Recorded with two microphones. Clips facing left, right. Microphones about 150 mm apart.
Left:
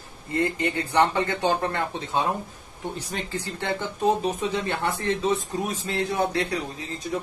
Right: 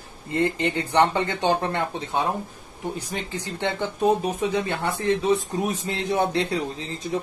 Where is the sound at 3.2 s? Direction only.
15° right (ahead or behind).